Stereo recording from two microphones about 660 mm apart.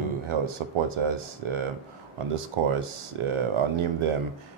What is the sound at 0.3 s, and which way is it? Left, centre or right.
Speech, right.